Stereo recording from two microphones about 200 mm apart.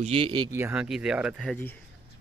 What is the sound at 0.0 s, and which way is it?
Speech, 25° right (ahead or behind).